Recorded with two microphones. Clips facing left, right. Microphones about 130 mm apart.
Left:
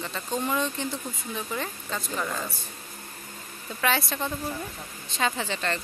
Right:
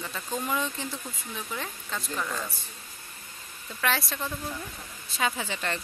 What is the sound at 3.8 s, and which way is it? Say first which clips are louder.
Speech: left 3 dB; centre (ahead or behind).